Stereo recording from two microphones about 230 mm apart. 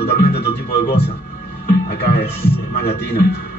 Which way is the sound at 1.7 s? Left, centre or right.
Left.